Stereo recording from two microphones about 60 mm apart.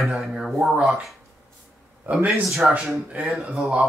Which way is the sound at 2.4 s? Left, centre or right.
Centre.